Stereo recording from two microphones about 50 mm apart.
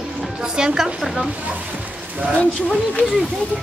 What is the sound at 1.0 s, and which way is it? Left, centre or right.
Speech, centre.